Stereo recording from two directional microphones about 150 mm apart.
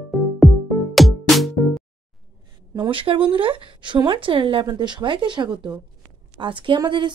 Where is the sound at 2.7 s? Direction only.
30° right (ahead or behind).